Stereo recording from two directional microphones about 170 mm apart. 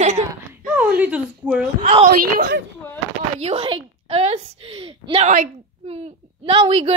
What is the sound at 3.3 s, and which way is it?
A woman's voice, 35° right (ahead or behind).